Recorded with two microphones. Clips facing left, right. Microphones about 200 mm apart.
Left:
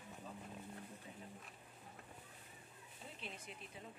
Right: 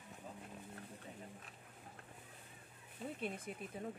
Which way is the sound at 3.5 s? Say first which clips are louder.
Right 8 dB; 50° right (ahead or behind).